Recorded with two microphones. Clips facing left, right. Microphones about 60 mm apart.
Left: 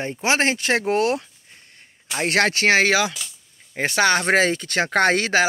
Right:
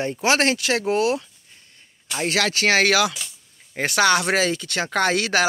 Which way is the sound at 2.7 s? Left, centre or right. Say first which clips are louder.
Right 2 dB; left.